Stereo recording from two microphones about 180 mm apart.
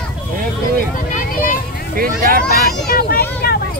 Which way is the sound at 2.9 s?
55° left (ahead or behind).